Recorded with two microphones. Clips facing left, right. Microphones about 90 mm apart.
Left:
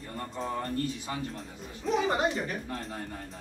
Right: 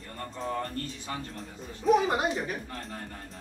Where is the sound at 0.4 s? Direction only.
15° left (ahead or behind).